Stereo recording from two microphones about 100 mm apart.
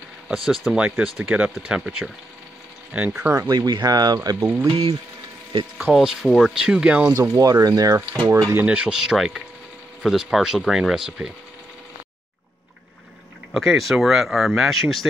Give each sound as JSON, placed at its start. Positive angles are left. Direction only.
{"t": 0.3, "sound": "speech", "side_deg": -5}
{"t": 3.4, "sound": "speech", "side_deg": -45}
{"t": 4.4, "sound": "speech", "side_deg": -20}
{"t": 4.6, "sound": "speech", "side_deg": -55}
{"t": 5.9, "sound": "speech", "side_deg": 0}
{"t": 7.2, "sound": "speech", "side_deg": -35}
{"t": 8.5, "sound": "speech", "side_deg": -10}
{"t": 13.5, "sound": "speech", "side_deg": 0}